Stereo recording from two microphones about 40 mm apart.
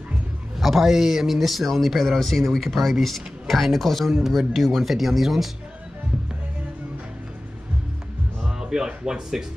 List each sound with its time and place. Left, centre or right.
0.6 s speech: centre
8.4 s speech: centre